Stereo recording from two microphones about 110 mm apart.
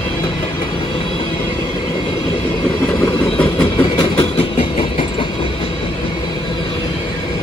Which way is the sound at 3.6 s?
45° left (ahead or behind).